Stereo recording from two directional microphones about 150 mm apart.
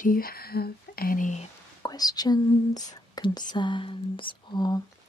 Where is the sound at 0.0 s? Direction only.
75° left (ahead or behind); by 1.5 s 55° left (ahead or behind).